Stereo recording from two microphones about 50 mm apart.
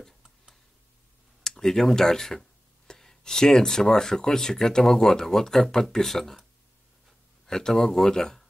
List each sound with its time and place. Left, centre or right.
1.4 s speech: centre
7.4 s speech: centre